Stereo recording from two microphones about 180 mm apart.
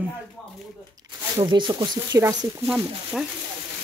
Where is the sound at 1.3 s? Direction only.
25° right (ahead or behind).